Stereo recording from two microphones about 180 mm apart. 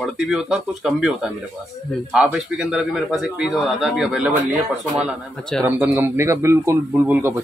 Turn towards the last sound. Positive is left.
turn(degrees=-10)  # may be behind; listen again after turning